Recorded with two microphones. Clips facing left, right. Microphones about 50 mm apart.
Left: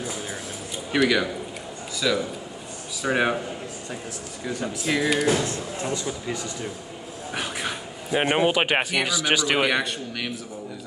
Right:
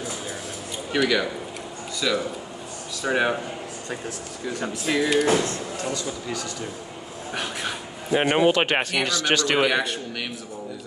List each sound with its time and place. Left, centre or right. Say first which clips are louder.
0.9 s speech: left 1 dB; centre
4.5 s speech: even; centre
5.8 s speech: even; centre
7.3 s speech: even; centre